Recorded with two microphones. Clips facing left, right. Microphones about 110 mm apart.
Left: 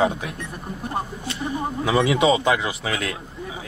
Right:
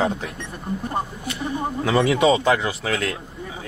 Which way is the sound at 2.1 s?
20° left (ahead or behind).